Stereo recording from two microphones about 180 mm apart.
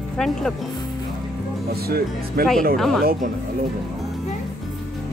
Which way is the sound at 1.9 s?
60° right (ahead or behind).